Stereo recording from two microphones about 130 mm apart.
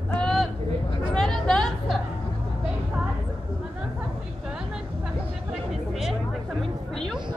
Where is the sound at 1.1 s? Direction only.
5° left (ahead or behind).